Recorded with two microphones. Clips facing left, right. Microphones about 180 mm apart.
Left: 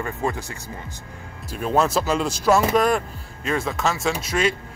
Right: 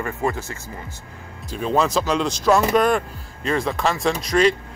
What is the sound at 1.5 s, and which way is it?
Speech, 5° left (ahead or behind).